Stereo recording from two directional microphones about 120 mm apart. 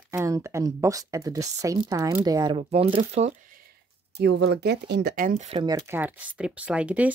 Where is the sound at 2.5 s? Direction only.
55° right (ahead or behind).